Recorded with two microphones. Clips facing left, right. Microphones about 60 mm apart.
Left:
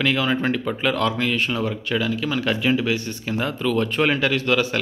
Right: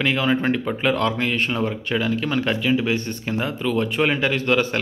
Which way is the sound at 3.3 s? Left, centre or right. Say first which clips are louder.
Left 1 dB; right.